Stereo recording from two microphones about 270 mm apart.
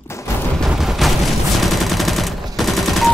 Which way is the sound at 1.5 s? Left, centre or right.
Centre.